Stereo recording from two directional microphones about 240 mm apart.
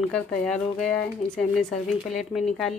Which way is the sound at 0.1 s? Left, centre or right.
Centre.